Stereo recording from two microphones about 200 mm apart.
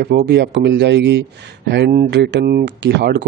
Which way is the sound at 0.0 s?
55° right (ahead or behind).